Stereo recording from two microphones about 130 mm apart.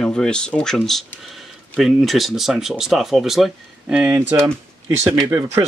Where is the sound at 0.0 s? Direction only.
5° left (ahead or behind); by 4.5 s 15° right (ahead or behind).